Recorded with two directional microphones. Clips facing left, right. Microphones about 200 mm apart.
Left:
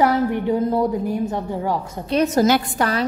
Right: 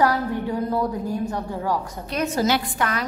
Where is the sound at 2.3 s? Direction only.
45° left (ahead or behind).